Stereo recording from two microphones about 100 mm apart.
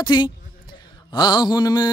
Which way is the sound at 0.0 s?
50° left (ahead or behind).